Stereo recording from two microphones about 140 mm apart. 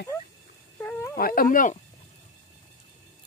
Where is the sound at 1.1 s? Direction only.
90° left; by 1.8 s 65° left (ahead or behind).